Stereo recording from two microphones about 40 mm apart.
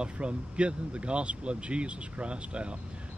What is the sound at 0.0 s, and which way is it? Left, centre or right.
Speech, right.